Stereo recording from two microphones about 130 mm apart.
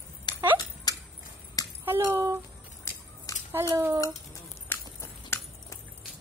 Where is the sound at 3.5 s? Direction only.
25° right (ahead or behind).